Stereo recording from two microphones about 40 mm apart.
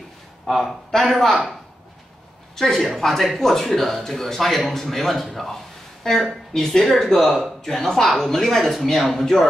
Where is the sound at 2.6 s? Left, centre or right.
Centre.